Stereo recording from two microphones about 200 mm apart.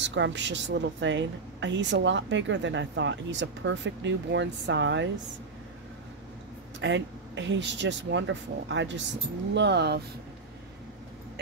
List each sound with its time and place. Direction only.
0.0 s a woman's voice: 65° right (ahead or behind)
6.8 s a woman's voice: 65° right (ahead or behind)